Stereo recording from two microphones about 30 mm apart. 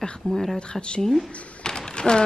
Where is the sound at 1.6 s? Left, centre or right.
Left.